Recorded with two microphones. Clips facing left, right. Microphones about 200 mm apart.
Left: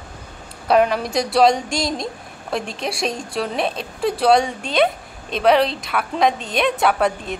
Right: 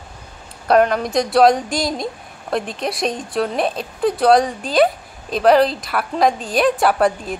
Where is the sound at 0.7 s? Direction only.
Centre (ahead or behind).